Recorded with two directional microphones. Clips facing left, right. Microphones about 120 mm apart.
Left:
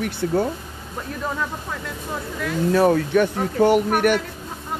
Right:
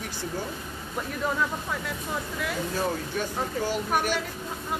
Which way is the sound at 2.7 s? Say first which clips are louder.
Left 12 dB; 65° left (ahead or behind).